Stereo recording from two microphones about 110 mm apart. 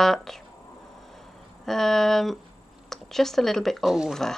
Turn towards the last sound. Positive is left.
turn(degrees=0)  # may be behind; listen again after turning